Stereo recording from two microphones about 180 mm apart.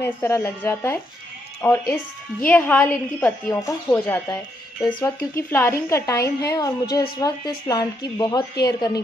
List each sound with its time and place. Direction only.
0.0 s a woman's voice: 15° left (ahead or behind)